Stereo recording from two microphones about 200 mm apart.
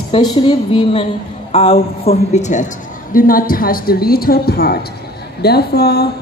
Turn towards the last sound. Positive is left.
turn(degrees=55)  # may be behind; listen again after turning